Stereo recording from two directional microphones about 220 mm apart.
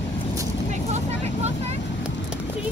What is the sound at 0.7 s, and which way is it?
Vehicle, 30° right (ahead or behind).